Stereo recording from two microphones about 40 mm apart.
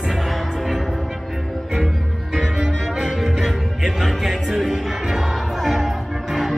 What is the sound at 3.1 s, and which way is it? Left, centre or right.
Music, centre.